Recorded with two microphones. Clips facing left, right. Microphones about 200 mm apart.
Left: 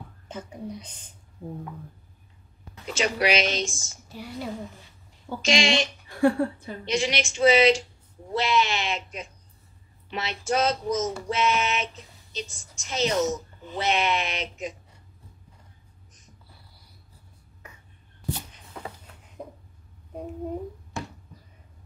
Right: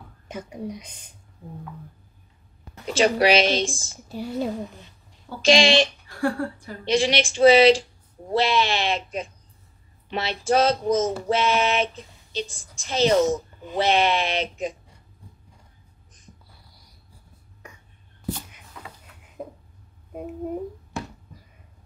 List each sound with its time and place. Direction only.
0.3 s a woman's voice: 10° right (ahead or behind)
2.9 s speech: 35° right (ahead or behind)
6.0 s speech: 20° left (ahead or behind)
6.8 s speech: 30° right (ahead or behind)
16.6 s dog: 15° right (ahead or behind)
19.4 s a sound: 5° right (ahead or behind)